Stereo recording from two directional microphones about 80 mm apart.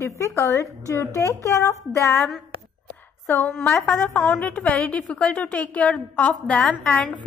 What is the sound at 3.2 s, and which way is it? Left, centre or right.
A woman's voice, left.